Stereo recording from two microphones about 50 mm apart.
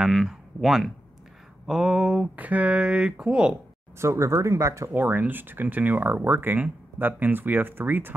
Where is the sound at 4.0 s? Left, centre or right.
Right.